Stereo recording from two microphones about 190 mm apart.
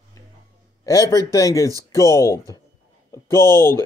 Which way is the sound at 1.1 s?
15° left (ahead or behind).